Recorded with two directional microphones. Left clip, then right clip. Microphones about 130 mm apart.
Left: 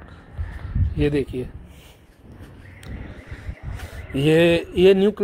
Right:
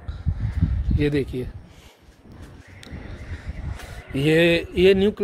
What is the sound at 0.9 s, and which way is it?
Speech, 10° right (ahead or behind).